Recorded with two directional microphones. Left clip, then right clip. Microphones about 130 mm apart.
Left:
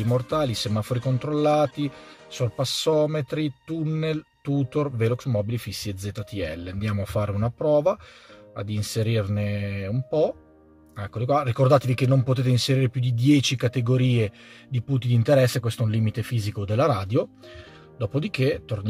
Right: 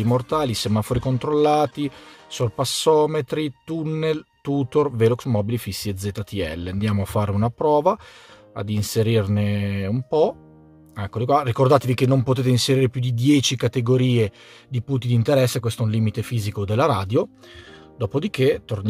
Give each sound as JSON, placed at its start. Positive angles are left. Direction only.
{"t": 0.0, "sound": "speech", "side_deg": -50}